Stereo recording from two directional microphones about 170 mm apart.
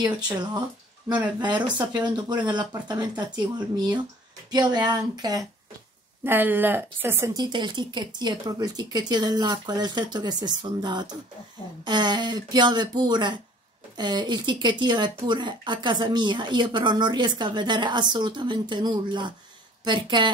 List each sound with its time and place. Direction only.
0.0 s speech: 25° right (ahead or behind)
6.2 s speech: 10° right (ahead or behind); by 20.2 s 25° right (ahead or behind)